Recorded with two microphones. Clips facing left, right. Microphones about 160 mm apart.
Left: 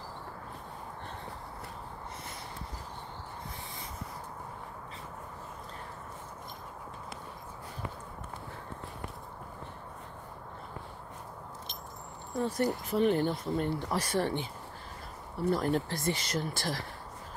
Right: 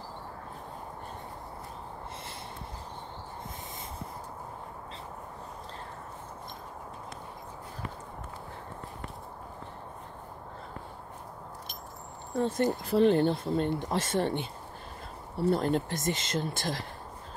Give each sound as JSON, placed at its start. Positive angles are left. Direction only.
{"t": 12.4, "sound": "speech", "side_deg": -25}